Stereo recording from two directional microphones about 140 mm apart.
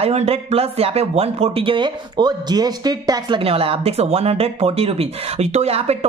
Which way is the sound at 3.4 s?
45° right (ahead or behind).